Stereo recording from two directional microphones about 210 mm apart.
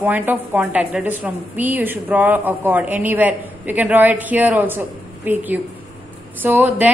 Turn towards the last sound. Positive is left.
turn(degrees=-10)  # may be behind; listen again after turning